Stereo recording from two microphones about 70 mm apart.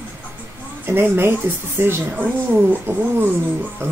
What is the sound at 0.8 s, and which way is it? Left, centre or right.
Speech, right.